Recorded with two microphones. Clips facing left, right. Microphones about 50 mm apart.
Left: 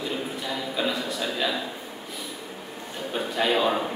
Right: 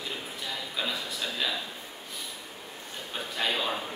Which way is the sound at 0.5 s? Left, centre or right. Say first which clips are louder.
Left 5 dB; centre.